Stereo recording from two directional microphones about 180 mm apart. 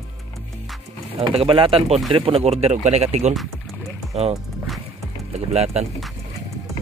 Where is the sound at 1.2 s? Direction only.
30° right (ahead or behind).